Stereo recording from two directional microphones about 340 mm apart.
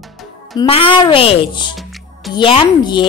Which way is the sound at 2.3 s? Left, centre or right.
Centre.